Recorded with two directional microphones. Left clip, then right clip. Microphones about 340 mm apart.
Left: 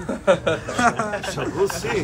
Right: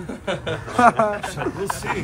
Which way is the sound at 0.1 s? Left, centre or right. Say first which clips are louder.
Left 8 dB; centre.